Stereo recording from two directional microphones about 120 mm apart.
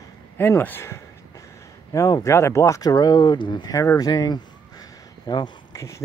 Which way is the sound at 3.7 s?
30° left (ahead or behind).